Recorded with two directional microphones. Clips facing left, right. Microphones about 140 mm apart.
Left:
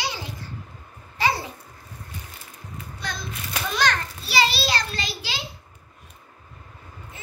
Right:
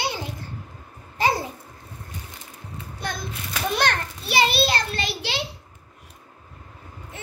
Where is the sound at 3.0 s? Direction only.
55° right (ahead or behind).